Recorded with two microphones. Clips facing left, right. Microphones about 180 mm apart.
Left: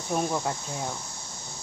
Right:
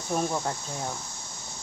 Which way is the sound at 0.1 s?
5° left (ahead or behind).